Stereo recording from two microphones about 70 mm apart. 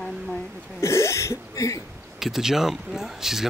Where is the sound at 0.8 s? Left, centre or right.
Left.